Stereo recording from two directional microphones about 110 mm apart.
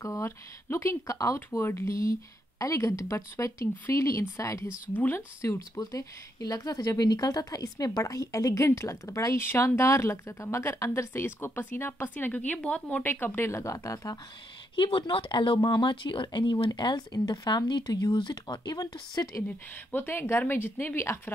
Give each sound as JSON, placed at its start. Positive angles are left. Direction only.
{"t": 0.0, "sound": "a woman's voice", "side_deg": 25}
{"t": 14.8, "sound": "speech", "side_deg": 50}
{"t": 19.4, "sound": "a woman's voice", "side_deg": 20}